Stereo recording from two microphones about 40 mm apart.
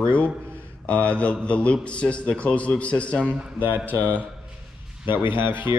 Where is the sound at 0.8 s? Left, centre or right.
Left.